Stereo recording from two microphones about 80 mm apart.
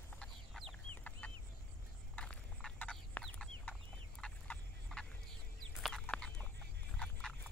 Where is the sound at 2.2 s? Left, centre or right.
Centre.